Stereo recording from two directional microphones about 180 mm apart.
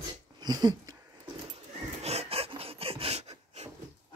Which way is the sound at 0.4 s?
20° right (ahead or behind).